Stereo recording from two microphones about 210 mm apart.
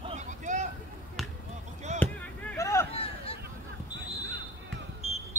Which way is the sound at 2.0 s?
10° left (ahead or behind).